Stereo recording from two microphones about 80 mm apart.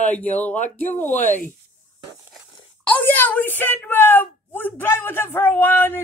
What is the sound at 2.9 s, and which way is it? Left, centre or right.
A woman's voice, left.